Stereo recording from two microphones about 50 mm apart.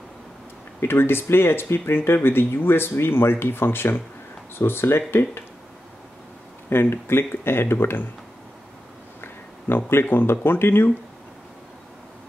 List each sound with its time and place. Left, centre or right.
0.7 s speech: left
6.7 s speech: left
9.2 s speech: left